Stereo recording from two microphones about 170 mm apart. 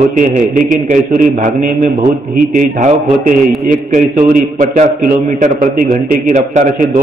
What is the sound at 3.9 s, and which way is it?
A man's voice, 50° right (ahead or behind).